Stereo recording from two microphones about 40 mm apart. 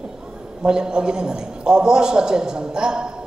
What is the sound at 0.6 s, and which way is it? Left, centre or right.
A man's voice, right.